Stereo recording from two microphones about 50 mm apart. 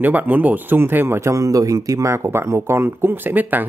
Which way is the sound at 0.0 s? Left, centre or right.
Right.